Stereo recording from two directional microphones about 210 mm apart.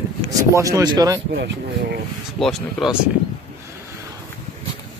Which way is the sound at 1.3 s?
50° right (ahead or behind).